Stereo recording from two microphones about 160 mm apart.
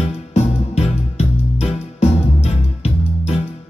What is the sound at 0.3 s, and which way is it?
Music, 40° left (ahead or behind).